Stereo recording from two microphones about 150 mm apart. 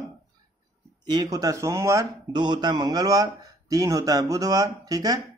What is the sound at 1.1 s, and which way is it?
Speech, 25° right (ahead or behind).